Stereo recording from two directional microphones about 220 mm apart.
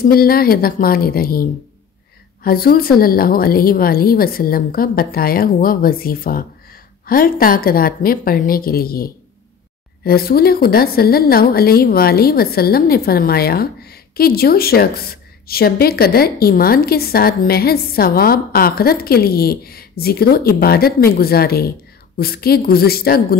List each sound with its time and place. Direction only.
0.0 s a woman's voice: 45° left (ahead or behind)